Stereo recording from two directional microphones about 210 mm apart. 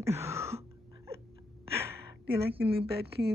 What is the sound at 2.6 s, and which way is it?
Speech, 50° right (ahead or behind).